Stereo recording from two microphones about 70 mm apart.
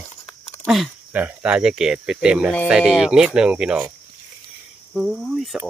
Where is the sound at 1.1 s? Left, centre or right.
Right.